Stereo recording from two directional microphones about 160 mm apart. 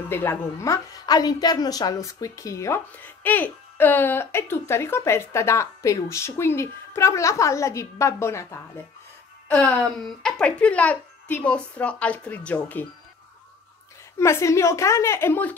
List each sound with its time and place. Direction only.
0.1 s a woman's voice: 15° left (ahead or behind)
9.8 s a woman's voice: 5° left (ahead or behind)
14.1 s a woman's voice: 15° left (ahead or behind)